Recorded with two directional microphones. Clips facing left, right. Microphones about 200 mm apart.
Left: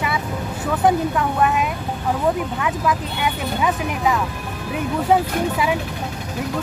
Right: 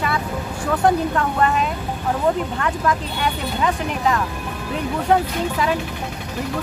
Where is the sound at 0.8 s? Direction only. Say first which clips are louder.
Left 1 dB; 5° left (ahead or behind).